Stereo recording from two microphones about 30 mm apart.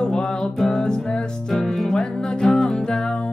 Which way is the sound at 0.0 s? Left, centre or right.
Left.